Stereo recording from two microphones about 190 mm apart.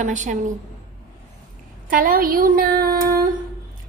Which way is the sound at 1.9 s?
45° right (ahead or behind).